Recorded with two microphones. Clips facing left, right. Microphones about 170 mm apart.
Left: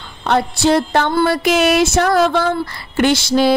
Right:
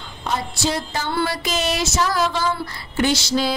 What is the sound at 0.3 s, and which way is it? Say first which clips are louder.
Speech: left 9 dB; 60° left (ahead or behind).